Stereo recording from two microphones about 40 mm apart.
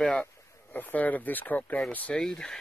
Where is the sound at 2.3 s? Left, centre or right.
Left.